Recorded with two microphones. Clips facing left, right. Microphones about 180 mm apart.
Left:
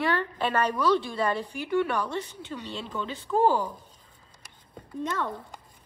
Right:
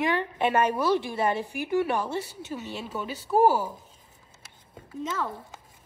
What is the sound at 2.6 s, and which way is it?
Speech, 10° right (ahead or behind).